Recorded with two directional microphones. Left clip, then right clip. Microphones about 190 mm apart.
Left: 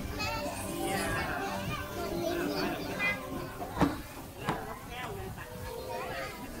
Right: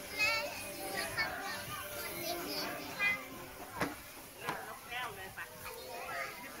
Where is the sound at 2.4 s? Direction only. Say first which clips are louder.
Left 7 dB; centre (ahead or behind).